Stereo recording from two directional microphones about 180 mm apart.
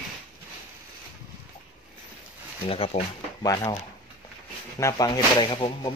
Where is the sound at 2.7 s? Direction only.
30° left (ahead or behind).